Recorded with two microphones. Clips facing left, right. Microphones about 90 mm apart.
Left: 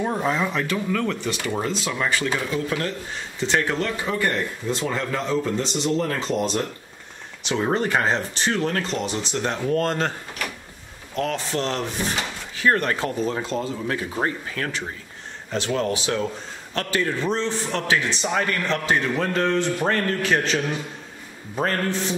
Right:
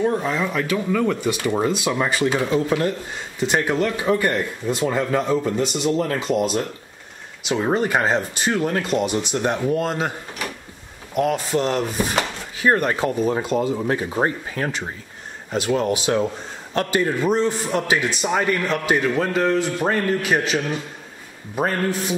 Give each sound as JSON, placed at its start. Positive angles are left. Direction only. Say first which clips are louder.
{"t": 0.0, "sound": "speech", "louder": "right 2 dB", "side_deg": 10}
{"t": 11.1, "sound": "speech", "louder": "right 5 dB", "side_deg": -10}
{"t": 13.7, "sound": "speech", "louder": "right 4 dB", "side_deg": -25}